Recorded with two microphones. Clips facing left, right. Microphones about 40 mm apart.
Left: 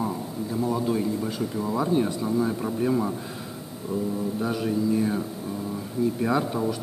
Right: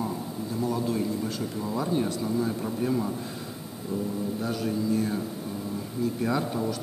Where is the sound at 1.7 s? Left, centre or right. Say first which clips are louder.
Left 3 dB; centre.